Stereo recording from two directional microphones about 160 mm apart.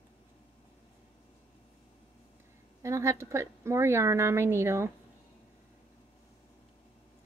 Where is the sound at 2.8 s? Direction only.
20° right (ahead or behind).